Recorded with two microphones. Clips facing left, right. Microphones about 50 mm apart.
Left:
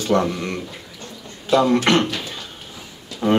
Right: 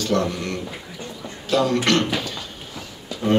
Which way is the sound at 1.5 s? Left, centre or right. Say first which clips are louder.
Left 4 dB; centre.